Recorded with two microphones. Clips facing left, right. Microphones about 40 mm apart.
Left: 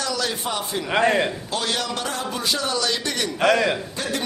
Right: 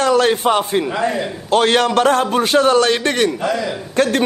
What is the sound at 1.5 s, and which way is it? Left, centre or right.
A man's voice, right.